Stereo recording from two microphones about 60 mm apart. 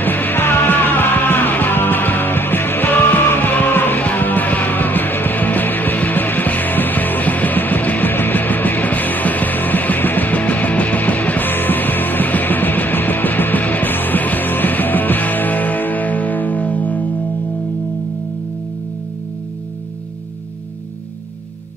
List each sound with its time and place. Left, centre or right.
0.0 s music: left